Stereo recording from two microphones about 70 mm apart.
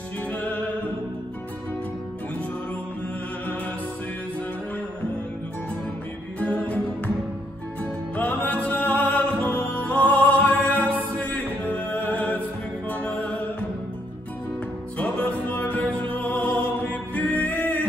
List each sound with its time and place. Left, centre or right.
0.3 s music: centre
6.4 s music: centre
7.8 s music: centre
10.8 s music: right
11.1 s music: centre
15.0 s music: centre